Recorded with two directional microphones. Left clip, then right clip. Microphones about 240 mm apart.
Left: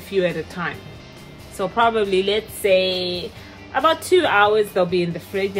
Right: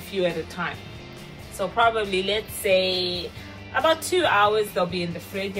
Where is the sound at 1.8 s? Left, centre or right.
Left.